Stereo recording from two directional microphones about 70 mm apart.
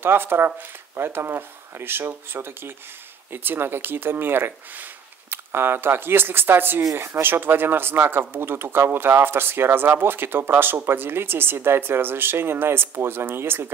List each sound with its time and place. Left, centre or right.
0.0 s speech: right